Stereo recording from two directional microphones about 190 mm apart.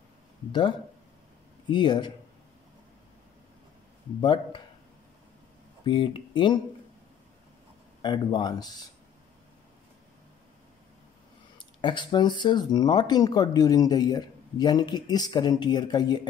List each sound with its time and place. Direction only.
0.5 s speech: 25° left (ahead or behind)
4.2 s speech: 25° left (ahead or behind)
5.9 s speech: 25° left (ahead or behind)
8.0 s speech: 25° left (ahead or behind)
11.5 s speech: 25° left (ahead or behind)